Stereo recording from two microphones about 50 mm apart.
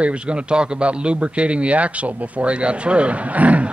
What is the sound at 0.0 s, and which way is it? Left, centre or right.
A man's voice, right.